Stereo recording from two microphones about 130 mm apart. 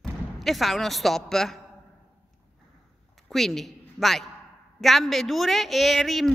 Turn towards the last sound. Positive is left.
turn(degrees=0)  # may be behind; listen again after turning